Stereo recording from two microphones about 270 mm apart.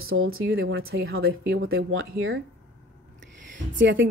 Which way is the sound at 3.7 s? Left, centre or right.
Right.